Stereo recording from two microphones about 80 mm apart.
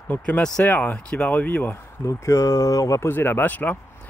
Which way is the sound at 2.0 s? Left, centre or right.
Left.